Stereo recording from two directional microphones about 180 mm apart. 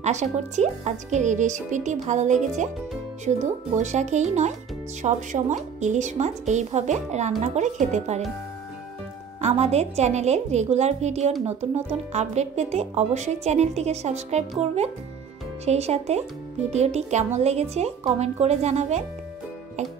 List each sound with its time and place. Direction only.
0.0 s speech: 40° right (ahead or behind)
9.4 s speech: 35° right (ahead or behind)